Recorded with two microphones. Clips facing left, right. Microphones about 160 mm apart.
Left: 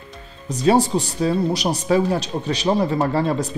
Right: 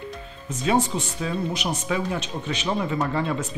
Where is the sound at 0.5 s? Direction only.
35° left (ahead or behind).